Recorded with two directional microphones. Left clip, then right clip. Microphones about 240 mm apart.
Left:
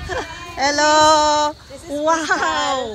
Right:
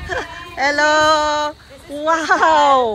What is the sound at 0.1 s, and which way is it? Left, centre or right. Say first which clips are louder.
A child's voice: right 2 dB; centre.